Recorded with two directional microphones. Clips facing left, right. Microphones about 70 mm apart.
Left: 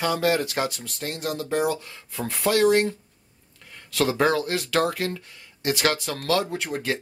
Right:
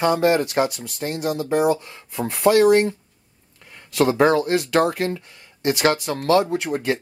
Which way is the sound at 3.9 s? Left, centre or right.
Right.